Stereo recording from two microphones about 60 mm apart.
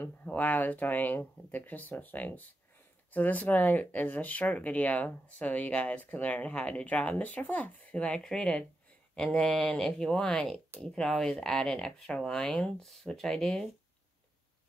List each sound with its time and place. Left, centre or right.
0.2 s speech: left
7.9 s speech: centre
12.8 s speech: centre